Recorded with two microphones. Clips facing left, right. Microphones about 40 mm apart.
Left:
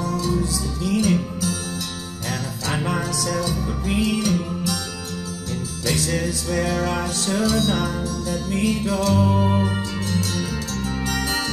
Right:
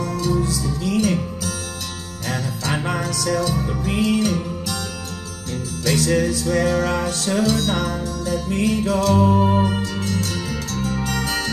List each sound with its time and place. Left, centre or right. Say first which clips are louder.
0.0 s music: right 1 dB; right
2.6 s music: even; right
5.9 s music: right 5 dB; right
9.1 s music: right 4 dB; right
9.6 s music: right 3 dB; right